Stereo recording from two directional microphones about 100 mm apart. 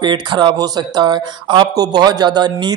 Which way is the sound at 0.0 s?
50° right (ahead or behind).